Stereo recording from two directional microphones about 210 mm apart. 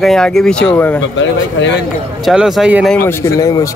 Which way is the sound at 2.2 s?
Centre (ahead or behind).